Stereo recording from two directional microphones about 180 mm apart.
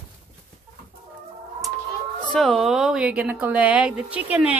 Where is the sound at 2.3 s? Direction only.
Centre (ahead or behind).